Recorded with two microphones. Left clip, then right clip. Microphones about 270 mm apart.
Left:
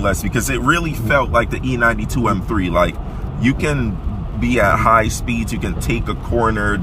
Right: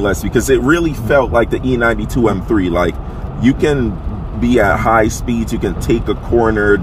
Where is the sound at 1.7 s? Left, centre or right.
Centre.